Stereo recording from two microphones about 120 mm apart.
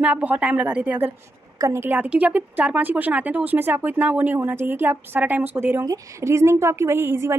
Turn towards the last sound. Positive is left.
turn(degrees=-20)  # may be behind; listen again after turning